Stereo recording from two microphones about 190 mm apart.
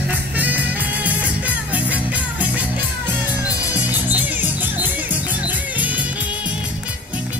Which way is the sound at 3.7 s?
10° right (ahead or behind).